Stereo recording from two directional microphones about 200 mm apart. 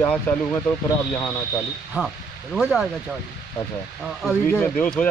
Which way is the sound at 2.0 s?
5° right (ahead or behind).